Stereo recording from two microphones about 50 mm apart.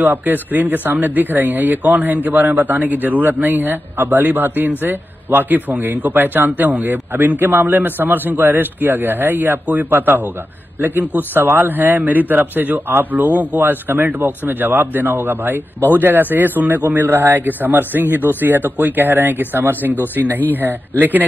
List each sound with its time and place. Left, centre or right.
0.0 s a man's voice: right